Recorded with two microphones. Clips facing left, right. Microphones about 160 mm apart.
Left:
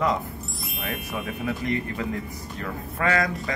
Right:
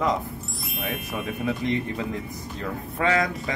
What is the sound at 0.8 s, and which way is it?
Speech, centre (ahead or behind).